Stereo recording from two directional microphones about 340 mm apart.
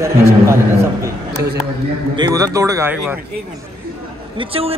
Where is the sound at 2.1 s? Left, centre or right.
Centre.